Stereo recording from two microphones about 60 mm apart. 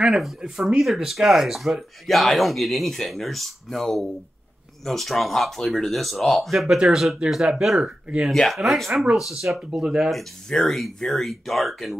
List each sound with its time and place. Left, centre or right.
0.7 s speech: centre
8.3 s speech: centre
10.1 s speech: centre